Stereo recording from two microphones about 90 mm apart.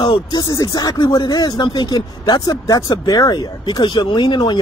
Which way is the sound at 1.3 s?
45° left (ahead or behind).